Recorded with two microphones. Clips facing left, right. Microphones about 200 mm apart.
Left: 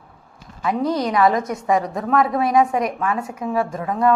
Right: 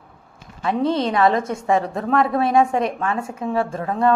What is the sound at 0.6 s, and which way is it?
A woman's voice, 30° right (ahead or behind).